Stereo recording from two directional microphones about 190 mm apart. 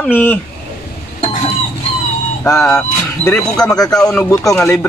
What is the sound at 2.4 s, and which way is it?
Speech, 15° left (ahead or behind).